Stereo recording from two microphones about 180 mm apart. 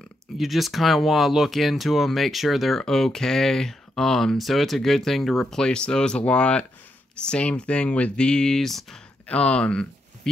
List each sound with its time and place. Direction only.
0.4 s speech: centre (ahead or behind)